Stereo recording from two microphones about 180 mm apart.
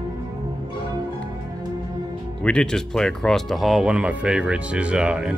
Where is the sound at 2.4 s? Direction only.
5° left (ahead or behind).